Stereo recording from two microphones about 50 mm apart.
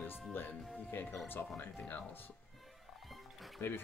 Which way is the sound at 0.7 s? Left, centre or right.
Left.